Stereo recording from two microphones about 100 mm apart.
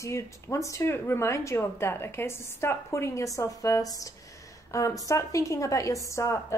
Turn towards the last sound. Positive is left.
turn(degrees=30)  # may be behind; listen again after turning